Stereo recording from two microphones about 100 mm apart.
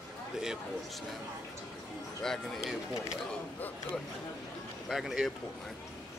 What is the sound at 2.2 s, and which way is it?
Speech, 5° left (ahead or behind).